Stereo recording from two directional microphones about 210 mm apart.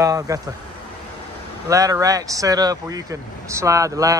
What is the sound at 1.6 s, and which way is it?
Speech, 15° right (ahead or behind).